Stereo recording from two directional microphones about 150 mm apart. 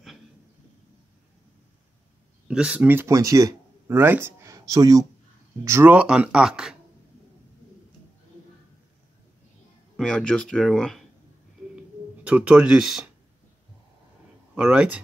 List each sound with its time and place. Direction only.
2.4 s speech: 5° right (ahead or behind)
9.9 s speech: 5° left (ahead or behind)
11.7 s a sound: 10° right (ahead or behind)
14.5 s speech: 5° right (ahead or behind)